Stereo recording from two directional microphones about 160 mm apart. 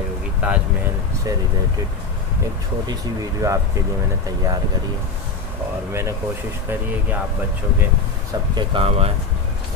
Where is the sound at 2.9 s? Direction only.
20° right (ahead or behind).